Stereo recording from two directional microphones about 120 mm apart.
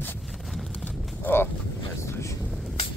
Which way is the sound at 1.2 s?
20° left (ahead or behind).